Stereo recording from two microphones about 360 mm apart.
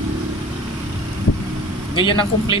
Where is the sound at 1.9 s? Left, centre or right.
Centre.